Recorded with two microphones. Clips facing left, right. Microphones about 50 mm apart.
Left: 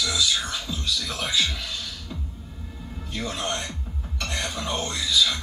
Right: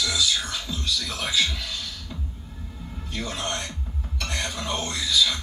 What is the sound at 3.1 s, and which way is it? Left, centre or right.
A man's voice, left.